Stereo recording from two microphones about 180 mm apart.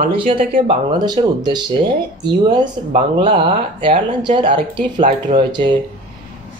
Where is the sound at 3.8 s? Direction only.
30° right (ahead or behind).